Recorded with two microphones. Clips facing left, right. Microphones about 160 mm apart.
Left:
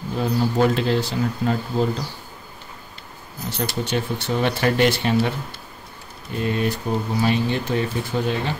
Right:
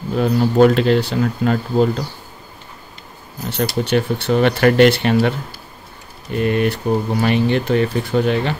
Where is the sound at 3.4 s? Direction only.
65° right (ahead or behind).